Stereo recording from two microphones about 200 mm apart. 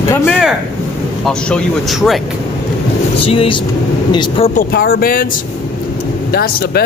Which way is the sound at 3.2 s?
30° left (ahead or behind).